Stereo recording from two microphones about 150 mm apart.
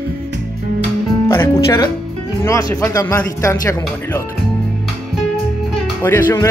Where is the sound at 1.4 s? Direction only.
15° left (ahead or behind).